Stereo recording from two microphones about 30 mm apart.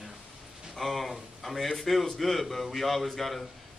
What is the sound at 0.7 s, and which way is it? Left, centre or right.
A man's voice, centre.